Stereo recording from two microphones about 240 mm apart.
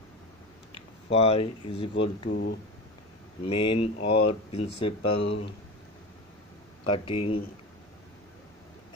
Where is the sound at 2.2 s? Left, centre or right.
Left.